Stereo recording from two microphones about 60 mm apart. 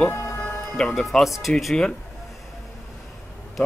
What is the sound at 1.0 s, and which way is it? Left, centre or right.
Speech, centre.